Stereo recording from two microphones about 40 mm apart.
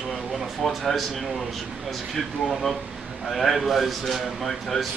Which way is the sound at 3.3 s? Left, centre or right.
Centre.